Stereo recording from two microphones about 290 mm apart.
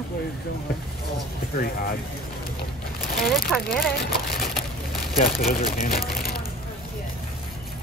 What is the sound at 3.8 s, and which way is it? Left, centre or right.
Speech, left.